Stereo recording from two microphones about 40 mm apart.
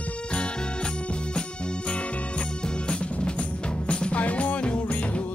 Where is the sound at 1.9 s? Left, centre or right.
Left.